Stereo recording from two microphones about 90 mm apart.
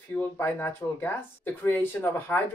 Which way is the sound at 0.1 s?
25° left (ahead or behind).